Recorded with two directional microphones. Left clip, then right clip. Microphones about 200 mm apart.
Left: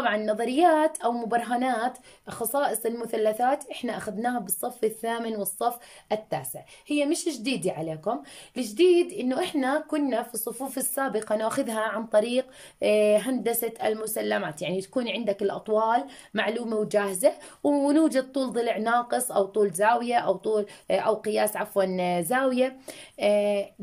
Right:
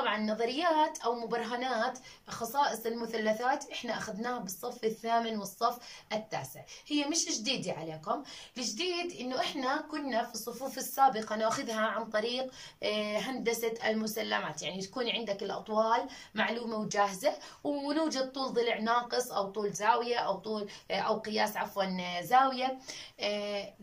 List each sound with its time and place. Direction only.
0.0 s speech: 60° left (ahead or behind)